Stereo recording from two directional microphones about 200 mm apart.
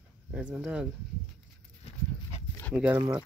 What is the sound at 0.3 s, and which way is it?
Speech, 5° right (ahead or behind).